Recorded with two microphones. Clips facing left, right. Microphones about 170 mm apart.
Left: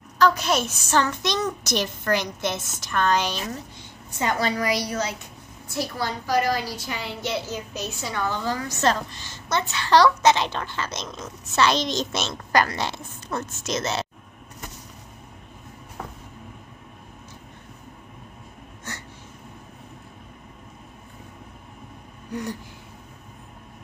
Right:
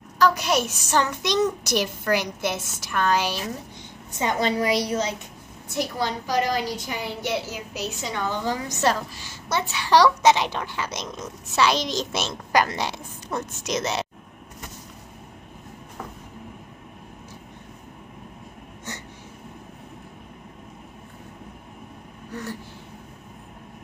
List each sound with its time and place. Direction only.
0.2 s a woman's voice: 10° right (ahead or behind)
4.2 s a woman's voice: 20° right (ahead or behind)
18.9 s a sound: 20° right (ahead or behind)
22.3 s vehicle: 15° left (ahead or behind)